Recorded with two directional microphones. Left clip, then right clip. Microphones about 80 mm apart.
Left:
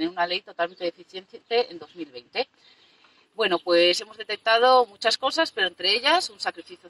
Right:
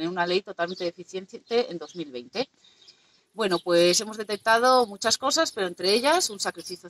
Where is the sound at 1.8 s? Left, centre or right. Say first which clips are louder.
Right 2 dB; right.